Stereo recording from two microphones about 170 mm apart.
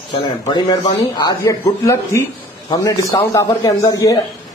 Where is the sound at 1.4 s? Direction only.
15° left (ahead or behind).